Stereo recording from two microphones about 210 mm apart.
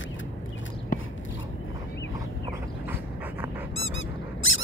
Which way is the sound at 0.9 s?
40° left (ahead or behind).